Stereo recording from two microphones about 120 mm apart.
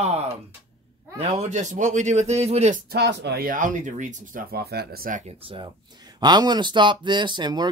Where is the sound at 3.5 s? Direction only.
90° right.